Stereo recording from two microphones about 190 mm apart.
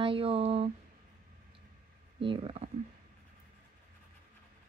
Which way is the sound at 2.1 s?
30° right (ahead or behind).